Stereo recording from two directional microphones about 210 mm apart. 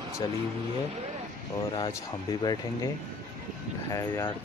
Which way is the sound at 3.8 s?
15° left (ahead or behind).